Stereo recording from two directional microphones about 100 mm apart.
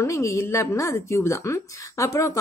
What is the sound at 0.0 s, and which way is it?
A woman's voice, 30° left (ahead or behind).